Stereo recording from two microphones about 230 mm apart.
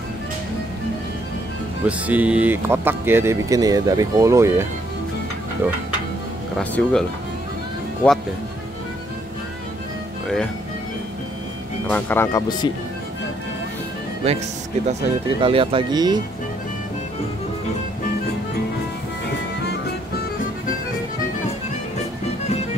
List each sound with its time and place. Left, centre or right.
1.9 s speech: centre
6.6 s speech: centre
10.2 s speech: centre
11.9 s speech: centre
14.2 s speech: right